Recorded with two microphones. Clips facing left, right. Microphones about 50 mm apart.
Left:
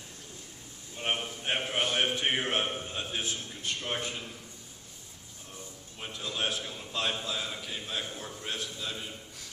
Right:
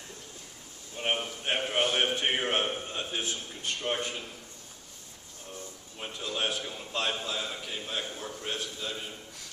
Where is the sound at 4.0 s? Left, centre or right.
Centre.